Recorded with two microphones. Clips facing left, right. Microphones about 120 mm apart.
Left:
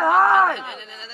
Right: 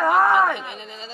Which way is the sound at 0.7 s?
20° right (ahead or behind).